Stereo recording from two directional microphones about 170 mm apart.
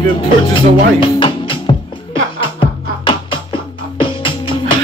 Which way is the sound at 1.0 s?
30° left (ahead or behind).